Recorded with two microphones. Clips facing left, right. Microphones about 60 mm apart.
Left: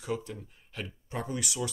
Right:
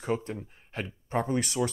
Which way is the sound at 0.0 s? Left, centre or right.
Right.